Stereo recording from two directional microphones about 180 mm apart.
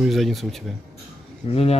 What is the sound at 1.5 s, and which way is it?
Speech, 35° left (ahead or behind).